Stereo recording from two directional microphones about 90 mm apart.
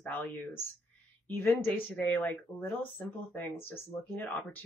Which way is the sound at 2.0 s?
20° left (ahead or behind).